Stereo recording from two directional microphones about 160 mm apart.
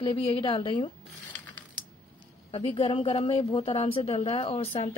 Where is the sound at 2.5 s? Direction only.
35° left (ahead or behind).